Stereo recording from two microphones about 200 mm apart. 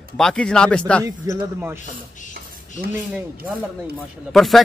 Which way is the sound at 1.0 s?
15° right (ahead or behind).